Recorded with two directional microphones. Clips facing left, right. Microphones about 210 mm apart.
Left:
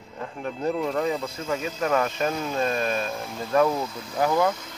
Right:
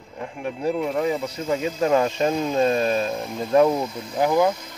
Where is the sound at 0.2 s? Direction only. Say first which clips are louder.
Right 2 dB; 15° right (ahead or behind).